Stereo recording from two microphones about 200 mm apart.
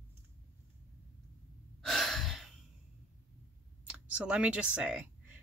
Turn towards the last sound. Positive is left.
turn(degrees=-5)  # may be behind; listen again after turning